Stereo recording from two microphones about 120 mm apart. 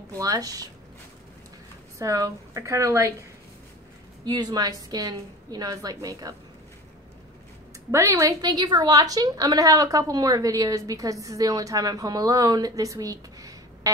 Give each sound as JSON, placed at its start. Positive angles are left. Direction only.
{"t": 0.2, "sound": "a woman's voice", "side_deg": -30}
{"t": 2.0, "sound": "a woman's voice", "side_deg": -25}
{"t": 7.9, "sound": "a woman's voice", "side_deg": -25}